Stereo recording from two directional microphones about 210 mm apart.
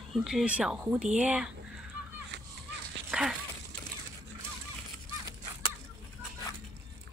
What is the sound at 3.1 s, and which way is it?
Dog, 5° right (ahead or behind).